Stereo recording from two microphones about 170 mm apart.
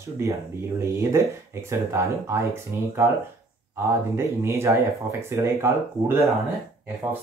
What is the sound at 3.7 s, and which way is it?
Speech, 15° right (ahead or behind).